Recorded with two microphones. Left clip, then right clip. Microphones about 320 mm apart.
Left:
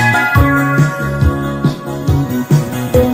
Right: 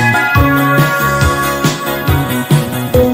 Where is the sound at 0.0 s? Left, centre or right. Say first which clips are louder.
Right 1 dB; centre.